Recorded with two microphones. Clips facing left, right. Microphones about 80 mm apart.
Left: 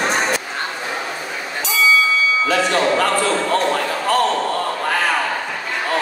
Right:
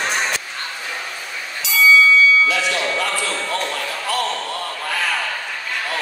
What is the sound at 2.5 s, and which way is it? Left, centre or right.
Basketball bounce, left.